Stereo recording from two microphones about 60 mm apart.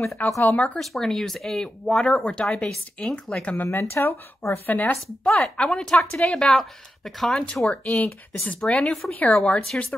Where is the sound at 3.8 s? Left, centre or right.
Left.